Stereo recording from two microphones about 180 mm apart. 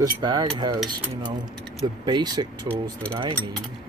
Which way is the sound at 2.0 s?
25° right (ahead or behind).